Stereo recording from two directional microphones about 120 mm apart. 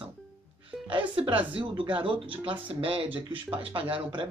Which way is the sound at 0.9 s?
45° right (ahead or behind).